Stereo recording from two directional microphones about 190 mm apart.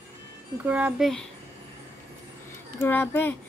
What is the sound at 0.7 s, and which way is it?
Speech, 5° right (ahead or behind).